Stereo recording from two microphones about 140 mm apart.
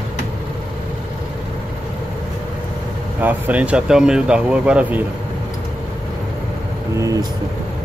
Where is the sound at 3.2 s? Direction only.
10° right (ahead or behind).